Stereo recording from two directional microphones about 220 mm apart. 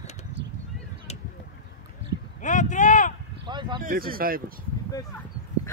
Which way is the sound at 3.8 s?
40° right (ahead or behind).